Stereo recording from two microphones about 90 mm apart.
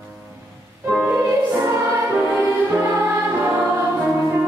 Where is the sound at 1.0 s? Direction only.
20° right (ahead or behind).